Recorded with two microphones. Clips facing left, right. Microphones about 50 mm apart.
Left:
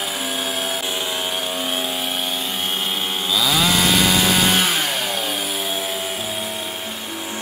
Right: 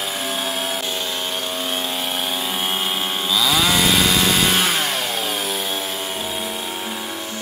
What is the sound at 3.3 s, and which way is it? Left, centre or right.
Chainsaw, centre.